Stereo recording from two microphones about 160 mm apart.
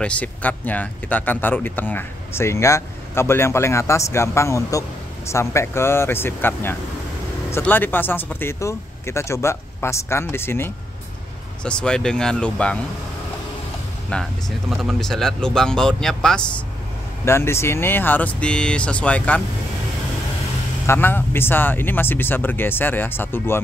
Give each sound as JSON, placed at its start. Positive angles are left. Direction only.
{"t": 0.0, "sound": "speech", "side_deg": 10}
{"t": 14.1, "sound": "speech", "side_deg": 5}
{"t": 17.2, "sound": "speech", "side_deg": 15}
{"t": 20.8, "sound": "speech", "side_deg": 15}